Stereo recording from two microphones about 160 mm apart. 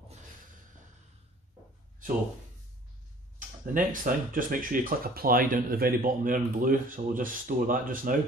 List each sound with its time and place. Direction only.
3.3 s speech: 55° right (ahead or behind)